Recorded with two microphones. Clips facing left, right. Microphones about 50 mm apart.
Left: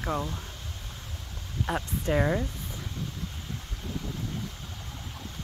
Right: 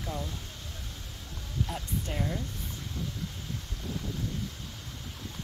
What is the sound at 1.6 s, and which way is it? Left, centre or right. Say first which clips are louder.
Speech: left 6 dB; left.